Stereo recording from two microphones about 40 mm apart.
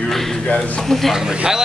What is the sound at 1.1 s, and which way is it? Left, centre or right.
Speech, centre.